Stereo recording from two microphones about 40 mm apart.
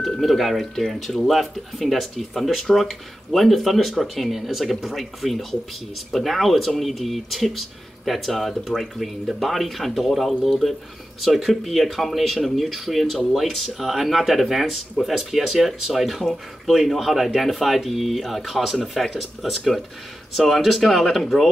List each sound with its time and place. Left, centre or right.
0.2 s speech: centre